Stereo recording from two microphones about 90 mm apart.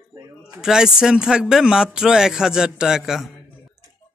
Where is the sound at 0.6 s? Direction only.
5° right (ahead or behind).